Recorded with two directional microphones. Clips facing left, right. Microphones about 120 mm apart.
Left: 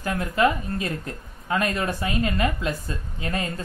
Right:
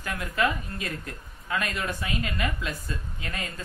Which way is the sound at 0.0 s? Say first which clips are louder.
Left 6 dB; 30° left (ahead or behind).